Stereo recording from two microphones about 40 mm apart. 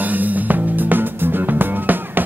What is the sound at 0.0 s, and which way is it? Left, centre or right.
Music, right.